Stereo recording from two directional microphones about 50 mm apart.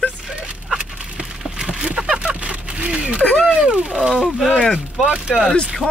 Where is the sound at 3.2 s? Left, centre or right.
Left.